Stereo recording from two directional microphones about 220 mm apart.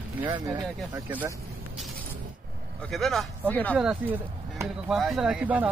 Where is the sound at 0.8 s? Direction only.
5° right (ahead or behind).